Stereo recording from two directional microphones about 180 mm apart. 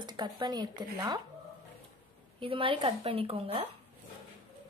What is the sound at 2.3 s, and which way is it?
A woman's voice, 30° right (ahead or behind).